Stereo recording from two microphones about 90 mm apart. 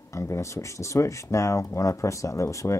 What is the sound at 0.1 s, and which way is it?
Speech, 35° left (ahead or behind).